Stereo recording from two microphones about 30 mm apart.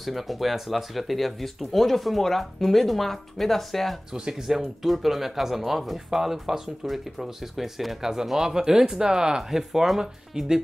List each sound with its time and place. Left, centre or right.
0.0 s speech: centre
4.5 s speech: centre
8.0 s speech: right
9.5 s speech: centre
9.9 s speech: centre